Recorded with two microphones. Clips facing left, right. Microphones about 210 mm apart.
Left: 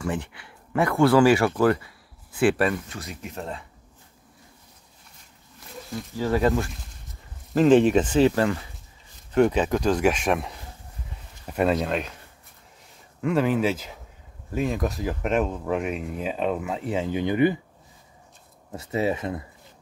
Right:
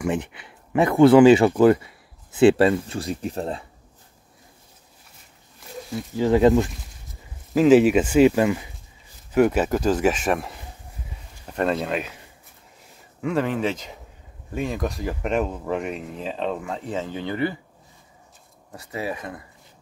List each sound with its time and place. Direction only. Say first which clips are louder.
0.0 s speech: right 4 dB; 20° right (ahead or behind); by 3.6 s 35° right (ahead or behind)
6.1 s speech: right 6 dB; 20° right (ahead or behind)
7.5 s speech: right 2 dB; 5° right (ahead or behind)
11.7 s speech: even; 5° right (ahead or behind)
13.2 s speech: left 1 dB; centre (ahead or behind)
18.8 s speech: left 5 dB; 25° left (ahead or behind)